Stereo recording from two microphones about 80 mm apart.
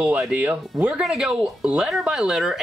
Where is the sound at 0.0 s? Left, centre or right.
Centre.